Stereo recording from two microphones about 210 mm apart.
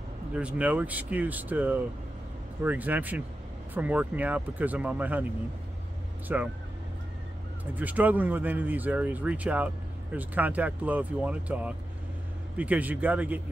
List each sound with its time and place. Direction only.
0.3 s speech: 5° right (ahead or behind)
6.2 s speech: 10° right (ahead or behind)
7.7 s speech: 10° right (ahead or behind)